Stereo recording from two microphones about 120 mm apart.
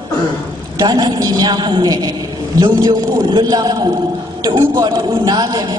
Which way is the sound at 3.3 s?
35° right (ahead or behind).